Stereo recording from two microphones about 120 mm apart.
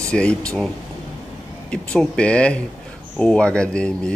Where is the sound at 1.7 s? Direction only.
10° left (ahead or behind).